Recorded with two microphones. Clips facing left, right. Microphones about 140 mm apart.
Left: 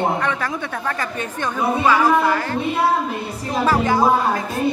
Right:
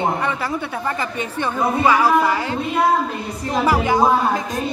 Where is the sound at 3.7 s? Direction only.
15° right (ahead or behind).